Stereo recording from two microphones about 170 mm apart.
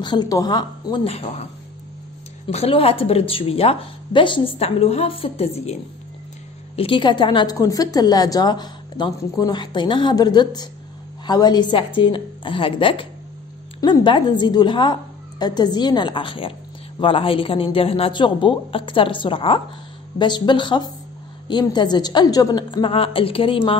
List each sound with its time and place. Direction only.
0.0 s a woman's voice: 25° left (ahead or behind)
6.8 s a woman's voice: 30° left (ahead or behind)